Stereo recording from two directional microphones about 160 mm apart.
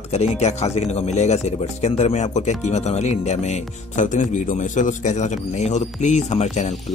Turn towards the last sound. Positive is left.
turn(degrees=45)  # may be behind; listen again after turning